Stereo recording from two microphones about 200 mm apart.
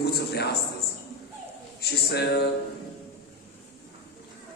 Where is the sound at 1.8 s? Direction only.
55° left (ahead or behind).